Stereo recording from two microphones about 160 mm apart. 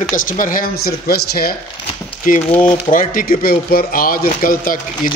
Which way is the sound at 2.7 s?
45° left (ahead or behind).